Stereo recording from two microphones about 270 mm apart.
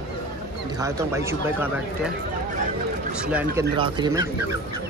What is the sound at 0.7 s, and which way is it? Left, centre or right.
Speech, centre.